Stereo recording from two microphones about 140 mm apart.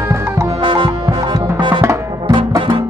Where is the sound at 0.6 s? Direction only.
35° right (ahead or behind).